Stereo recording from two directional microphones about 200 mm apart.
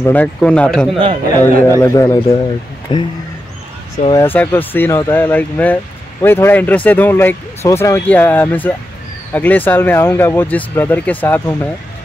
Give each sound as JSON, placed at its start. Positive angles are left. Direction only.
{"t": 0.0, "sound": "speech", "side_deg": 10}
{"t": 4.1, "sound": "speech", "side_deg": 10}